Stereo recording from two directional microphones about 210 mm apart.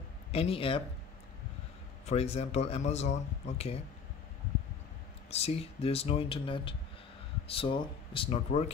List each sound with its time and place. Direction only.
0.3 s speech: 25° left (ahead or behind)
2.0 s speech: 30° left (ahead or behind)
5.3 s speech: 30° left (ahead or behind)